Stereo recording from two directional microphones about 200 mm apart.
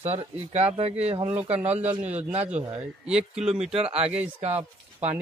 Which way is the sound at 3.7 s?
30° right (ahead or behind).